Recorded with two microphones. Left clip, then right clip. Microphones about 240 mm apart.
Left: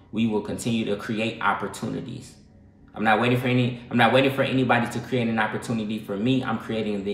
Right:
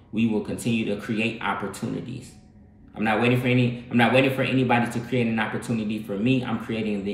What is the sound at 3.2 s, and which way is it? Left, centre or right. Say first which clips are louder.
Speech: right 1 dB; left.